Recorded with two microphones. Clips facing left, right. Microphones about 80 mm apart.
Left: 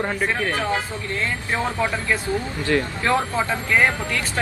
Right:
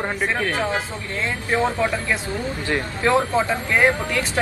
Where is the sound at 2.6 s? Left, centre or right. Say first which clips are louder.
Even; right.